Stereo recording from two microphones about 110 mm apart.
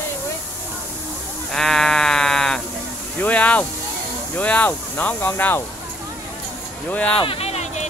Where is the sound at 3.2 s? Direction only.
10° left (ahead or behind).